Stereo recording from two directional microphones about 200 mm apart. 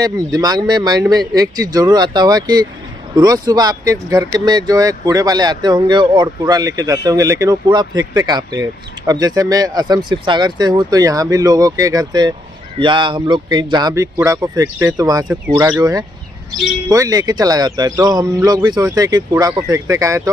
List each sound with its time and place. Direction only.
0.0 s speech: 20° right (ahead or behind)